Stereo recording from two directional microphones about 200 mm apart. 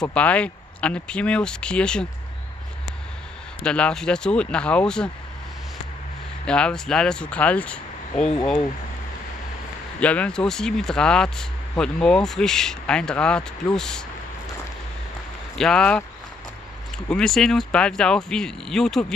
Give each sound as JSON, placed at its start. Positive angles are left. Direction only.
{"t": 0.1, "sound": "speech", "side_deg": 5}
{"t": 3.6, "sound": "speech", "side_deg": 5}
{"t": 6.4, "sound": "speech", "side_deg": 5}
{"t": 9.9, "sound": "speech", "side_deg": 5}
{"t": 15.5, "sound": "speech", "side_deg": 5}
{"t": 17.1, "sound": "speech", "side_deg": 0}